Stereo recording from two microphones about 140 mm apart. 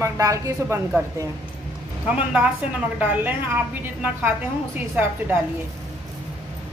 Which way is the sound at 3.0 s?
10° right (ahead or behind).